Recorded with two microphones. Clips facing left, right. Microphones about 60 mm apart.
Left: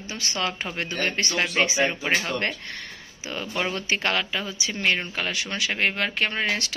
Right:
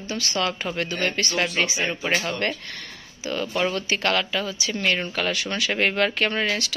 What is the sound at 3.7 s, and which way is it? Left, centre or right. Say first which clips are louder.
Speech: right 2 dB; left.